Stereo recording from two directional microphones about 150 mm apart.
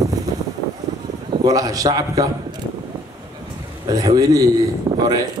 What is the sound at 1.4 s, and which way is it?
Mantra, 25° right (ahead or behind).